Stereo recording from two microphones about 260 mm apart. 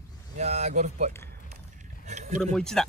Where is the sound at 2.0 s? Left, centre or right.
Right.